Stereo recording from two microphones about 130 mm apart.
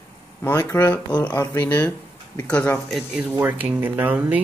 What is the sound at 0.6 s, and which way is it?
Speech, 30° left (ahead or behind).